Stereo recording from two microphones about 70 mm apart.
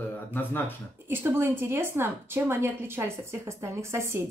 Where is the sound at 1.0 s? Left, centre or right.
Right.